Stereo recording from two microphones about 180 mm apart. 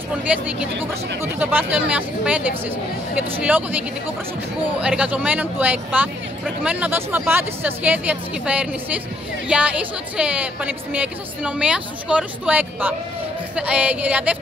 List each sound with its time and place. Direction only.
1.4 s a woman's voice: 10° right (ahead or behind)